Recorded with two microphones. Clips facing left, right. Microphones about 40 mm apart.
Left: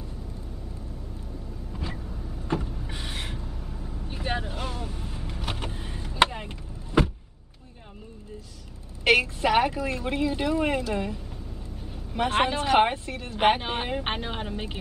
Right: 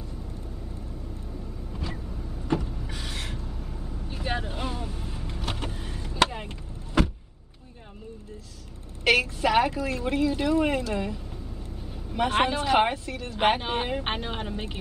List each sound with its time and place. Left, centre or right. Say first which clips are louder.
1.8 s vehicle: even; centre
2.9 s gasp: left 1 dB; centre
3.4 s vehicle: even; centre
5.4 s power windows: even; centre
9.0 s a sound: left 1 dB; centre
9.8 s speech: right 1 dB; centre
10.6 s speech: even; centre